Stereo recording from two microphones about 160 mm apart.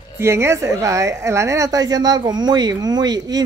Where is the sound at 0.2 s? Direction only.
15° right (ahead or behind).